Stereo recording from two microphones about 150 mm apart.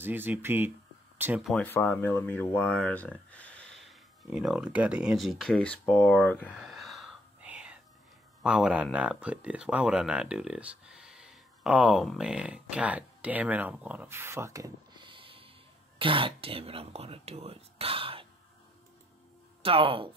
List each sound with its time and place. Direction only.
0.0 s speech: 15° right (ahead or behind)
1.1 s a sound: 15° right (ahead or behind)
1.4 s speech: 5° left (ahead or behind)
6.4 s whispering: centre (ahead or behind)
8.4 s speech: 5° right (ahead or behind); by 15.0 s 20° right (ahead or behind)
15.0 s a sound: 35° right (ahead or behind)
16.0 s speech: 35° right (ahead or behind)
19.6 s speech: 35° right (ahead or behind)